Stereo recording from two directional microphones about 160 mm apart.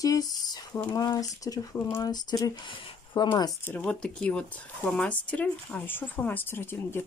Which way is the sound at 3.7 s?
10° left (ahead or behind).